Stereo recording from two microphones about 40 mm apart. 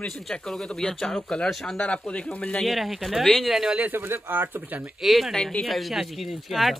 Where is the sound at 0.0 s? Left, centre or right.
Centre.